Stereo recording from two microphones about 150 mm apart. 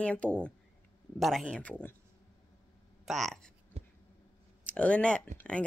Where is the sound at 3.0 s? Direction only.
Centre (ahead or behind).